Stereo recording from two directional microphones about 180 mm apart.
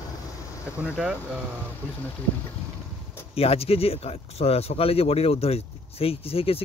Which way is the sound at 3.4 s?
35° left (ahead or behind).